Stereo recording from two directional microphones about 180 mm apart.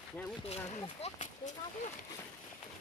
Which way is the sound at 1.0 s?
45° left (ahead or behind).